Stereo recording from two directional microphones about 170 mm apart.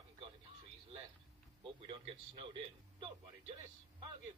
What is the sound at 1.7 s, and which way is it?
A man's voice, 30° right (ahead or behind).